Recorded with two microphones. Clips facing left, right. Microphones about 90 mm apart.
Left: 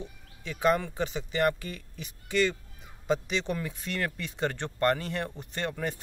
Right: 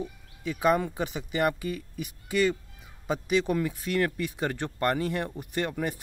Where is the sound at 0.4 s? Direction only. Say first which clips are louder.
Right 2 dB; 10° right (ahead or behind).